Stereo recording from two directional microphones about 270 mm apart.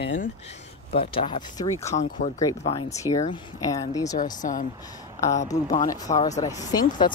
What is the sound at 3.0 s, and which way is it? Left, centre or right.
Speech, centre.